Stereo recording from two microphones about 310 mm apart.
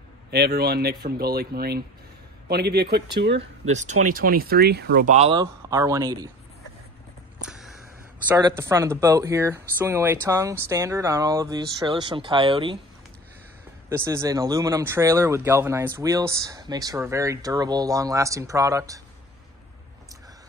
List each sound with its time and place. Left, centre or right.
0.3 s speech: right
3.7 s speech: right
7.4 s a sound: centre
8.3 s speech: centre
13.8 s speech: centre